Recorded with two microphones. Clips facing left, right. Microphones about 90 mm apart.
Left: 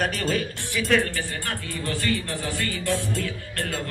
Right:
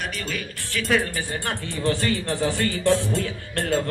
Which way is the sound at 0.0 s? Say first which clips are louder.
Left 5 dB; 40° left (ahead or behind).